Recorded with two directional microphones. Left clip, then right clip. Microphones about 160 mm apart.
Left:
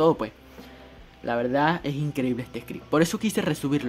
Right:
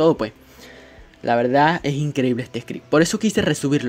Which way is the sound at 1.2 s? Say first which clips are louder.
Right 7 dB; 35° right (ahead or behind).